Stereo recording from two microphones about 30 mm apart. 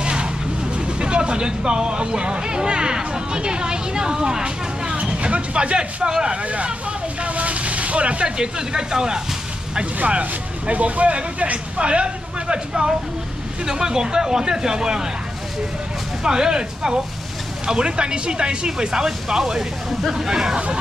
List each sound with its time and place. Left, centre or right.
0.0 s vehicle: right
0.7 s speech: right
4.9 s vehicle: right
6.0 s speech: right
6.4 s speech: right
7.2 s vehicle: right
8.4 s speech: right
10.7 s speech: right
16.3 s speech: right
20.0 s speech: centre